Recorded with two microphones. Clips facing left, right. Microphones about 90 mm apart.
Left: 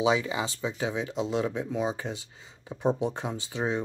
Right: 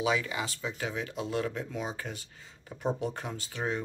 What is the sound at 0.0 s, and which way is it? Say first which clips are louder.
Speech: left 4 dB; 25° left (ahead or behind).